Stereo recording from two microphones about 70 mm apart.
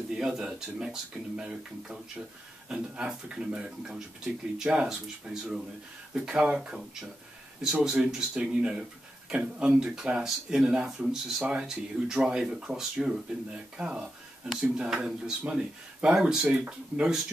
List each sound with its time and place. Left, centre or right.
0.1 s speech: centre
16.4 s speech: centre